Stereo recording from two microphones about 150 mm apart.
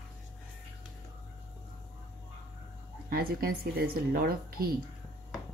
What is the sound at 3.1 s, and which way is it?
Speech, 90° right.